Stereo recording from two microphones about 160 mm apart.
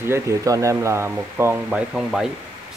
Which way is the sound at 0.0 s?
15° right (ahead or behind).